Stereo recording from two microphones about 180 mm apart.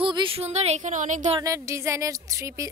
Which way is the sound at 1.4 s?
15° right (ahead or behind).